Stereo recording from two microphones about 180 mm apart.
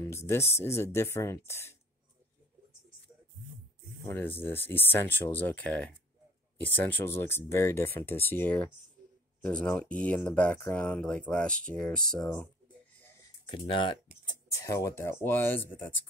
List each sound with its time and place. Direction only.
0.3 s speech: 15° left (ahead or behind)
4.1 s speech: 10° left (ahead or behind)
13.5 s speech: 25° left (ahead or behind)
14.2 s speech: 15° left (ahead or behind)